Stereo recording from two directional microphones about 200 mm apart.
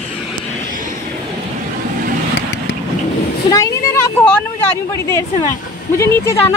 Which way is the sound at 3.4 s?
15° left (ahead or behind).